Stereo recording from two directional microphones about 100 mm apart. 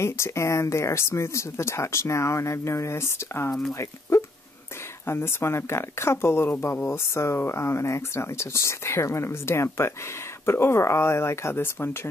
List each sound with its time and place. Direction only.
0.0 s speech: 30° left (ahead or behind)